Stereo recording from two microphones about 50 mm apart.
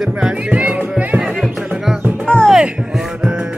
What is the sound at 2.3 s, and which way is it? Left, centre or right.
Music, left.